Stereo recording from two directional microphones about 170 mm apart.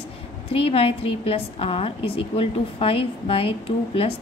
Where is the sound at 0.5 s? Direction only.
35° left (ahead or behind).